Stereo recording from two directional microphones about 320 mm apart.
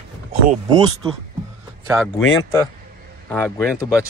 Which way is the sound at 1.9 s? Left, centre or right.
Centre.